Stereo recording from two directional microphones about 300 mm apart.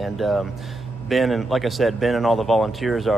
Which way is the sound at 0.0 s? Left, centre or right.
Centre.